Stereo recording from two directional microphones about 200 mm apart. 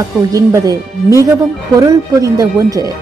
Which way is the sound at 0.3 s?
15° right (ahead or behind).